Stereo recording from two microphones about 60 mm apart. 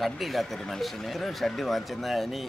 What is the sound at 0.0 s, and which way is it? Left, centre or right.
Speech, centre.